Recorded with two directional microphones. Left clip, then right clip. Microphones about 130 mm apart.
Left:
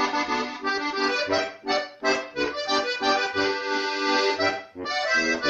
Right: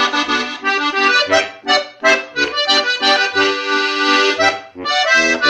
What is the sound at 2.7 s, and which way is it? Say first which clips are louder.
Accordion: right 9 dB; 15° right (ahead or behind).